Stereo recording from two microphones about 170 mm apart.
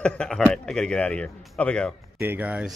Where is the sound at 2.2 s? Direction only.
10° right (ahead or behind).